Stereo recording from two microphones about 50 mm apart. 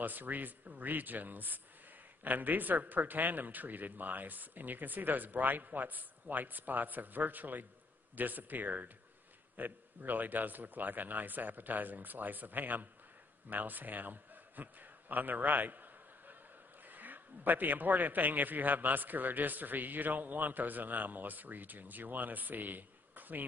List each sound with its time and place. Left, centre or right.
0.0 s a man's voice: right